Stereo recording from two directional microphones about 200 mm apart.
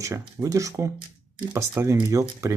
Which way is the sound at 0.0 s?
15° right (ahead or behind).